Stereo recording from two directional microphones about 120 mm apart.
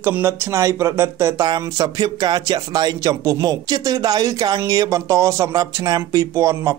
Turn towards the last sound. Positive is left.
turn(degrees=-25)  # may be behind; listen again after turning